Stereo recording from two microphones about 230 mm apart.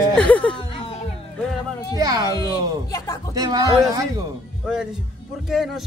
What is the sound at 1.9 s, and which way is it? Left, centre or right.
Speech, centre.